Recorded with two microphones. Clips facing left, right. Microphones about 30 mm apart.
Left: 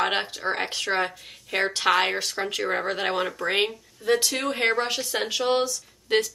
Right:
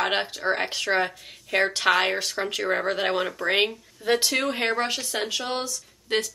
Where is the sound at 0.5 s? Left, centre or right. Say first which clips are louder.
Right 2 dB; centre.